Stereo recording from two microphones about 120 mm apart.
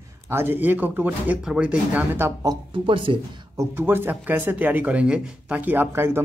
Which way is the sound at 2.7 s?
45° right (ahead or behind).